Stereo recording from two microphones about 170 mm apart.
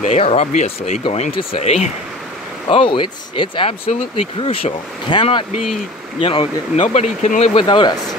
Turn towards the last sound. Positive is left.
turn(degrees=30)  # may be behind; listen again after turning